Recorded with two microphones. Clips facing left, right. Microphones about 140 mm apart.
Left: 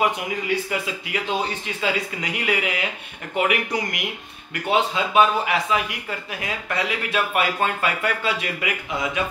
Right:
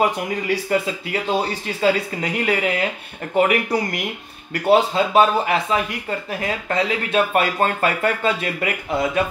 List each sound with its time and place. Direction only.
0.7 s speech: 35° right (ahead or behind)
7.3 s speech: 40° right (ahead or behind)